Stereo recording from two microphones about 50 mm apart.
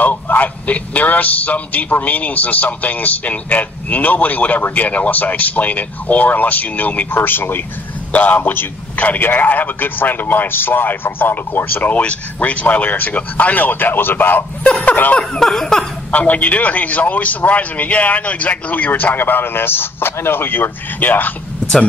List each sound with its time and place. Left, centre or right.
0.0 s a man's voice: left
7.2 s a man's voice: left
8.1 s a man's voice: left
8.9 s a man's voice: left
9.2 s a man's voice: left
12.0 s a man's voice: left
14.7 s laughter: left
15.1 s a sound: centre
16.1 s a man's voice: left